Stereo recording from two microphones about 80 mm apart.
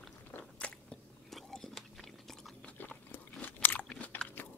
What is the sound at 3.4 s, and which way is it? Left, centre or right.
Crunch, left.